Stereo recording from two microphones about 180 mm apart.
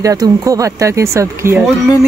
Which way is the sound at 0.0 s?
20° right (ahead or behind).